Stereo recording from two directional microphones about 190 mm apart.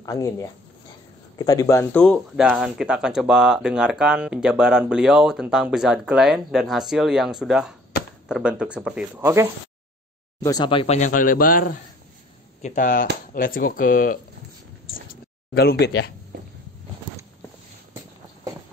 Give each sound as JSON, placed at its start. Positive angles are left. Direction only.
{"t": 0.0, "sound": "speech", "side_deg": 15}
{"t": 9.2, "sound": "speech", "side_deg": -15}
{"t": 10.4, "sound": "a man's voice", "side_deg": 20}
{"t": 15.8, "sound": "speech", "side_deg": 60}